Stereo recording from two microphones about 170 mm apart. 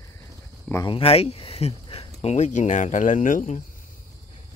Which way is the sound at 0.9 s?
35° left (ahead or behind).